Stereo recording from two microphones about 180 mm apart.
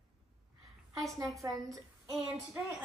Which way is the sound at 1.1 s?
20° right (ahead or behind).